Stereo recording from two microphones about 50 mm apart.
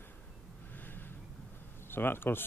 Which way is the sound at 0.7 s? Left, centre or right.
Left.